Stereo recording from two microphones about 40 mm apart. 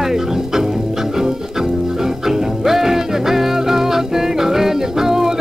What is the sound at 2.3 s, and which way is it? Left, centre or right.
Music, centre.